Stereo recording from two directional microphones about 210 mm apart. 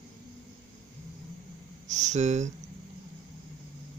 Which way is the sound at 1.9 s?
35° right (ahead or behind).